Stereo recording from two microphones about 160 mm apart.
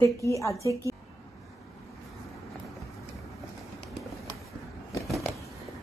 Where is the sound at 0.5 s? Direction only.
20° right (ahead or behind).